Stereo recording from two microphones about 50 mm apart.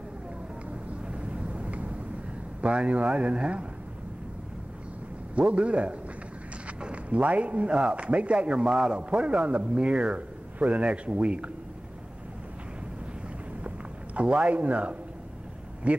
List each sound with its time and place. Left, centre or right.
1.0 s vehicle: right
2.6 s a man's voice: right
5.3 s a man's voice: right
13.7 s a sound: right
15.8 s a man's voice: right